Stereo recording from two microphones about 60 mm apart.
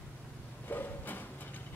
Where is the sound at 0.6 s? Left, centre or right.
Left.